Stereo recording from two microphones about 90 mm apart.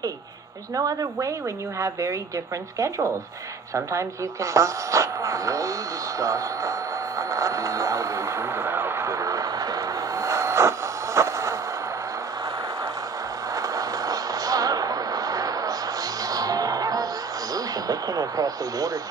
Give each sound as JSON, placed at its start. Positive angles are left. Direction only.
{"t": 0.7, "sound": "speech", "side_deg": -40}
{"t": 3.7, "sound": "a sound", "side_deg": -35}
{"t": 11.1, "sound": "skateboard", "side_deg": -35}
{"t": 13.6, "sound": "vehicle", "side_deg": -40}
{"t": 17.6, "sound": "speech", "side_deg": -45}